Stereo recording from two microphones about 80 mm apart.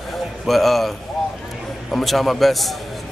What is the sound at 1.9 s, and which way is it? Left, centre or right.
Speech, centre.